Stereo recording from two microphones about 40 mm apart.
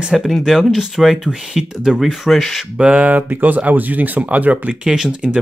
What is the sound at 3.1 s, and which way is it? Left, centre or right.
Speech, right.